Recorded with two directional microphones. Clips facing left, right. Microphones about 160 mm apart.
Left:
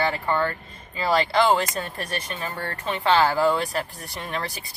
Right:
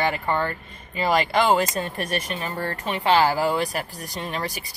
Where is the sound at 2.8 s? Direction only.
15° right (ahead or behind).